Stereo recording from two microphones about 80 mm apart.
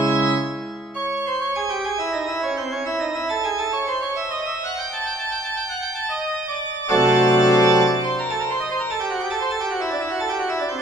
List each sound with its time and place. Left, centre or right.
6.9 s organ: left